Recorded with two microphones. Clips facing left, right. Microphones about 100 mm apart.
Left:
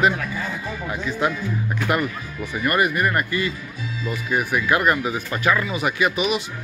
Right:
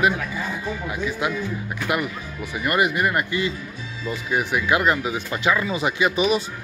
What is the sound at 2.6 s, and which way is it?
Speech, 20° right (ahead or behind).